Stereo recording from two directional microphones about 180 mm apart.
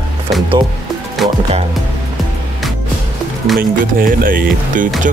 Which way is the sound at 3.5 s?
50° right (ahead or behind).